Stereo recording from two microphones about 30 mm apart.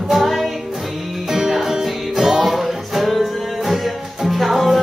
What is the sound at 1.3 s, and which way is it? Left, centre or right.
Music, centre.